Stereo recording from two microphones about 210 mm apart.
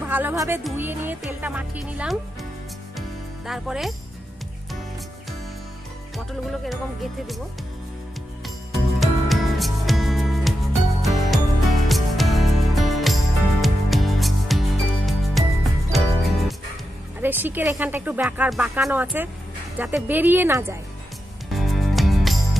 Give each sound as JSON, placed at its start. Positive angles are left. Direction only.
{"t": 0.0, "sound": "speech", "side_deg": -10}
{"t": 3.4, "sound": "music", "side_deg": 0}
{"t": 6.1, "sound": "music", "side_deg": 0}
{"t": 9.0, "sound": "music", "side_deg": 0}
{"t": 17.2, "sound": "speech", "side_deg": -10}
{"t": 21.5, "sound": "music", "side_deg": 0}